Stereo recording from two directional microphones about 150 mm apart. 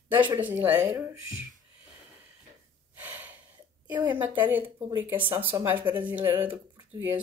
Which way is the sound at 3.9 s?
15° right (ahead or behind).